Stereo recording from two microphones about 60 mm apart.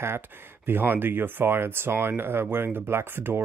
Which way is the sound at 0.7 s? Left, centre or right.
Right.